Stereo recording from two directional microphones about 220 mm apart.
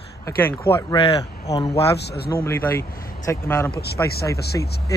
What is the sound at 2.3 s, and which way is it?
Speech, 10° left (ahead or behind).